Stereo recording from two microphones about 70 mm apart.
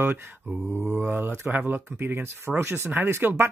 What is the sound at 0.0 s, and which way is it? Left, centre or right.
Speech, right.